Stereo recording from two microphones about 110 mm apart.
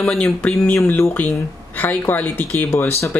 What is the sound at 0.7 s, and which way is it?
Speech, 25° left (ahead or behind).